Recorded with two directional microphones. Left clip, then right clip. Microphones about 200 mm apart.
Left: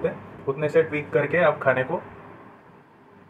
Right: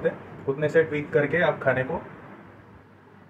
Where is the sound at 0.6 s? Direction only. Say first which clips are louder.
Left 1 dB; 5° right (ahead or behind).